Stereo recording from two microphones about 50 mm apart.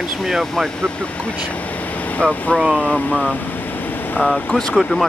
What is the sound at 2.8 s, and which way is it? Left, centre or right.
Speech, left.